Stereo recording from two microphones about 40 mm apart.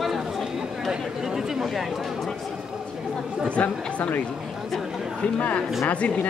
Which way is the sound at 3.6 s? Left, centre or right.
Left.